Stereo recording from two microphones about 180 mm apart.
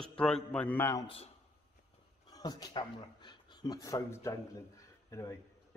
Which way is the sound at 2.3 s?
20° left (ahead or behind).